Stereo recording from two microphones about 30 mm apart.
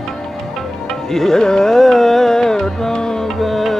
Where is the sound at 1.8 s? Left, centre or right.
Centre.